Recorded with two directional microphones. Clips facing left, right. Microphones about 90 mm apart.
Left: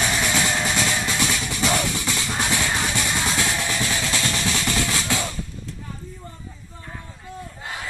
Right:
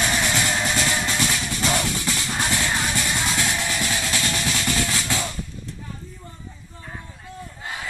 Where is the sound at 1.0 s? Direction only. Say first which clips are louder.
Even; 10° left (ahead or behind).